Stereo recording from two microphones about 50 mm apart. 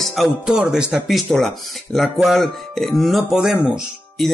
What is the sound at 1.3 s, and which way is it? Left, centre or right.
Speech, centre.